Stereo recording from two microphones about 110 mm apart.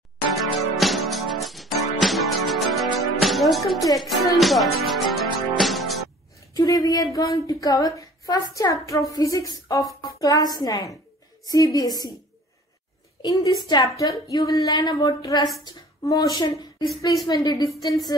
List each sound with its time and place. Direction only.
0.4 s music: centre (ahead or behind)
3.7 s speech: 35° left (ahead or behind)
4.0 s music: centre (ahead or behind)
6.5 s speech: 35° left (ahead or behind)
13.2 s speech: 35° left (ahead or behind)